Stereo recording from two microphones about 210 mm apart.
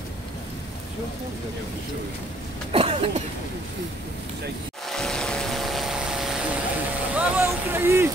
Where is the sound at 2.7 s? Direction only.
30° right (ahead or behind).